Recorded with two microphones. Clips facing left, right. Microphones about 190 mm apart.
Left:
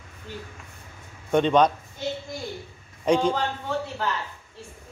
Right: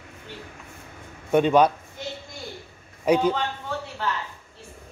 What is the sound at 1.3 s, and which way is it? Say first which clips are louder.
Speech: right 1 dB; 5° right (ahead or behind).